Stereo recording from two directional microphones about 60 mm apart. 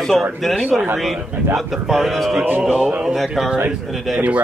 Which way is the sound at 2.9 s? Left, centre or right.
Centre.